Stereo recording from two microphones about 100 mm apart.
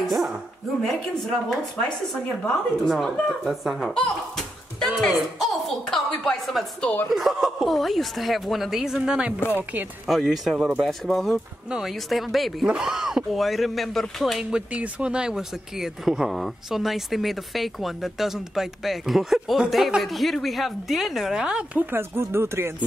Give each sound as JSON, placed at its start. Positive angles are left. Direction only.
{"t": 0.0, "sound": "dog", "side_deg": 0}
{"t": 0.8, "sound": "speech", "side_deg": 0}
{"t": 14.7, "sound": "speech", "side_deg": -10}
{"t": 21.9, "sound": "speech", "side_deg": -25}